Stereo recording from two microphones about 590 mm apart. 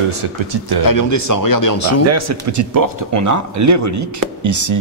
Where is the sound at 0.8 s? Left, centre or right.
Left.